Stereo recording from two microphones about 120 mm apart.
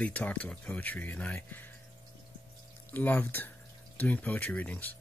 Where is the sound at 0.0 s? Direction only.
10° left (ahead or behind).